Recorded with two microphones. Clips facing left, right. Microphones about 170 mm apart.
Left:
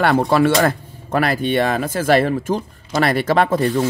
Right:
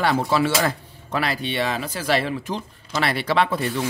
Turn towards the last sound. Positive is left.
turn(degrees=45)  # may be behind; listen again after turning